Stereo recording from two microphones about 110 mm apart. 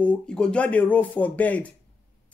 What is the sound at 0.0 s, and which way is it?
Speech, 10° left (ahead or behind).